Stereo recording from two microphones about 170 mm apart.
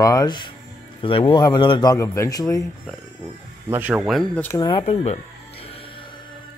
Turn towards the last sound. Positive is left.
turn(degrees=35)  # may be behind; listen again after turning